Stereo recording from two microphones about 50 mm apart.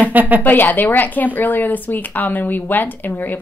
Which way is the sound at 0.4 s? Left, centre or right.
Left.